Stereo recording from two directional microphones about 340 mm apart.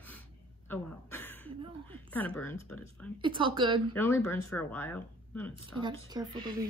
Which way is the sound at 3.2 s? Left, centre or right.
Centre.